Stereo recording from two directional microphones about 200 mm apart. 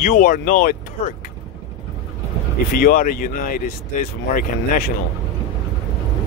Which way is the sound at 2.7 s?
45° left (ahead or behind).